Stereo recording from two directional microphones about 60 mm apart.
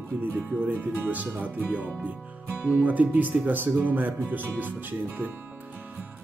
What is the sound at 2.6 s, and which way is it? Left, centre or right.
Speech, right.